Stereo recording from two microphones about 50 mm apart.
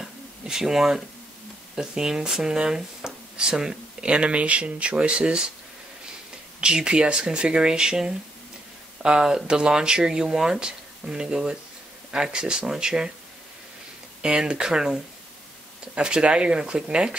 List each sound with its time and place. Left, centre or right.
0.0 s a sound: centre
1.8 s speech: centre
6.6 s speech: centre
14.2 s speech: centre